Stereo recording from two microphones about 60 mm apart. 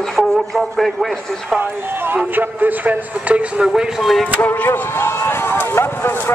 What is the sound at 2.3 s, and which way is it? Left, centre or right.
A man's voice, right.